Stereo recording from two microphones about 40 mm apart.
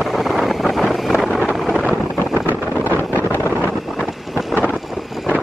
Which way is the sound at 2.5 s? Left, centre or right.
Right.